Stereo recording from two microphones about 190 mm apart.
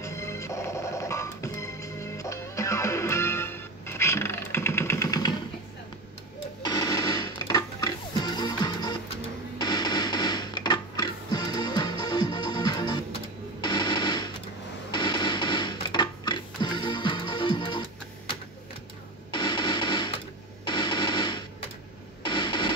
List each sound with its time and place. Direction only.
0.0 s music: 15° left (ahead or behind)
6.6 s music: 20° left (ahead or behind)
13.6 s a sound: 25° left (ahead or behind)
14.9 s music: 25° left (ahead or behind)
19.3 s music: 25° left (ahead or behind)